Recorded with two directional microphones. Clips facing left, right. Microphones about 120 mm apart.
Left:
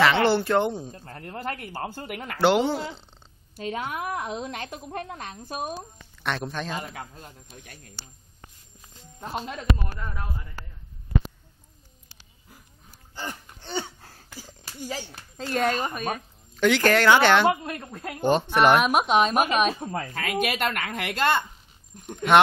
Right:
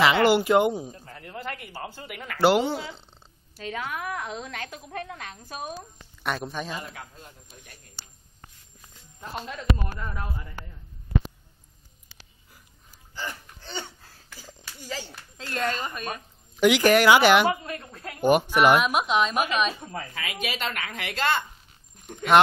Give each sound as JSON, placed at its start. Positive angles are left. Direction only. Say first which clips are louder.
{"t": 0.0, "sound": "speech", "louder": "right 1 dB", "side_deg": -10}
{"t": 1.0, "sound": "a woman's voice", "louder": "left 3 dB", "side_deg": 45}
{"t": 2.4, "sound": "speech", "louder": "even", "side_deg": 0}
{"t": 3.5, "sound": "a woman's voice", "louder": "left 2 dB", "side_deg": 30}
{"t": 6.2, "sound": "speech", "louder": "left 1 dB", "side_deg": -5}
{"t": 6.8, "sound": "a woman's voice", "louder": "left 3 dB", "side_deg": 45}
{"t": 9.2, "sound": "a woman's voice", "louder": "left 3 dB", "side_deg": 30}
{"t": 14.4, "sound": "a sound", "louder": "left 7 dB", "side_deg": 50}
{"t": 15.0, "sound": "speech", "louder": "left 3 dB", "side_deg": 15}
{"t": 16.5, "sound": "speech", "louder": "right 2 dB", "side_deg": -15}
{"t": 17.6, "sound": "a woman's voice", "louder": "left 2 dB", "side_deg": 45}
{"t": 18.2, "sound": "speech", "louder": "right 1 dB", "side_deg": -10}
{"t": 18.9, "sound": "a woman's voice", "louder": "left 3 dB", "side_deg": 50}
{"t": 22.1, "sound": "speech", "louder": "left 1 dB", "side_deg": 0}